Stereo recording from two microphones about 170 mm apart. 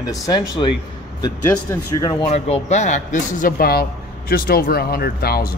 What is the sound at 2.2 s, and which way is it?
A man's voice, 35° left (ahead or behind).